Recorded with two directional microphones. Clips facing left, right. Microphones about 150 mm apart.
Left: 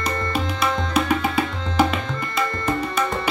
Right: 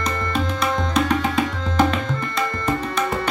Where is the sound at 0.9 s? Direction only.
10° left (ahead or behind).